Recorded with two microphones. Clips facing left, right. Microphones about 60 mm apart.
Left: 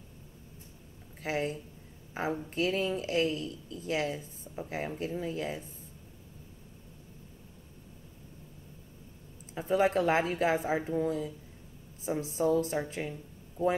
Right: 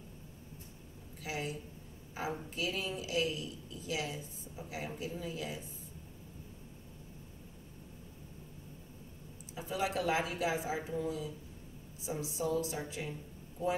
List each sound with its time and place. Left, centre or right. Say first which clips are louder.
1.2 s speech: left 7 dB; left
9.6 s speech: left 8 dB; left